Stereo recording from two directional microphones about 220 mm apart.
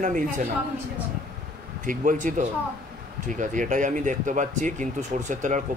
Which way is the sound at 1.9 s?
35° right (ahead or behind).